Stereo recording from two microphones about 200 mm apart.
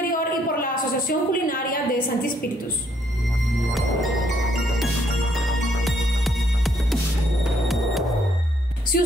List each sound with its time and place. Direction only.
0.1 s a woman's voice: 45° left (ahead or behind)
3.7 s music: centre (ahead or behind)
5.9 s music: centre (ahead or behind)
8.9 s speech: 45° left (ahead or behind)